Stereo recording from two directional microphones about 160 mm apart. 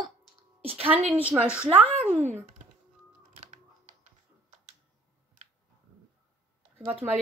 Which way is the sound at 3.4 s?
45° right (ahead or behind).